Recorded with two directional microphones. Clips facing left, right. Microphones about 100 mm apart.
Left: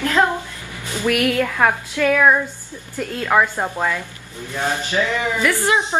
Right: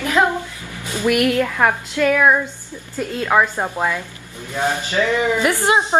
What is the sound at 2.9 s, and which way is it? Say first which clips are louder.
A woman's voice: right 1 dB; 15° right (ahead or behind).